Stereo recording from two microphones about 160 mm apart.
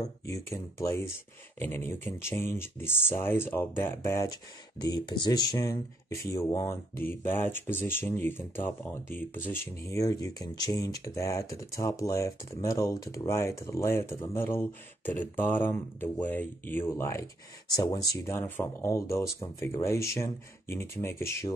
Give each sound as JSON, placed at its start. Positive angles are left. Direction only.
{"t": 0.3, "sound": "speech", "side_deg": 20}